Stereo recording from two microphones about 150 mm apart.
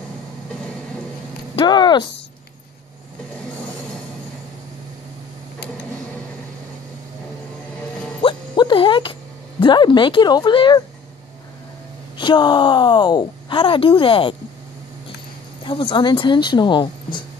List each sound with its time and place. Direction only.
1.6 s a sound: 30° left (ahead or behind)
8.2 s music: 35° left (ahead or behind)
9.6 s speech: 30° left (ahead or behind)
12.2 s speech: 30° left (ahead or behind)
15.6 s speech: 35° left (ahead or behind)